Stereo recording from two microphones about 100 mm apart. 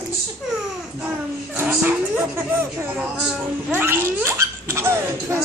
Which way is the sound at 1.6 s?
15° right (ahead or behind).